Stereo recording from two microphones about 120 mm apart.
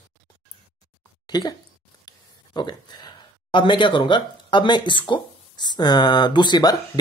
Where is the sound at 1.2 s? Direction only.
35° left (ahead or behind).